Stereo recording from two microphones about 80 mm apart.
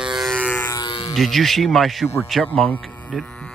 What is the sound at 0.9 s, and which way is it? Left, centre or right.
Music, left.